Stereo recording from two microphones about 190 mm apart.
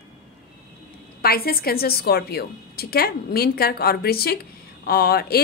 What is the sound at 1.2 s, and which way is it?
A woman's voice, 55° left (ahead or behind).